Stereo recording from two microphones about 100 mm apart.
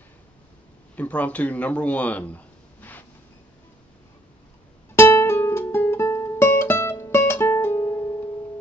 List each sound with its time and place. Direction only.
0.9 s speech: 15° left (ahead or behind)
4.9 s music: 25° left (ahead or behind)